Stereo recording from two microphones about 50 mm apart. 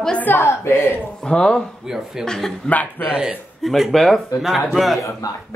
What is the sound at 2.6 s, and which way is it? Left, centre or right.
Speech, left.